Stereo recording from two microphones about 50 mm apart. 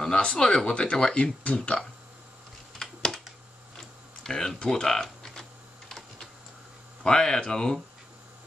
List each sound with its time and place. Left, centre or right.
0.0 s speech: centre
2.8 s a sound: centre
3.7 s typing: centre
7.0 s speech: centre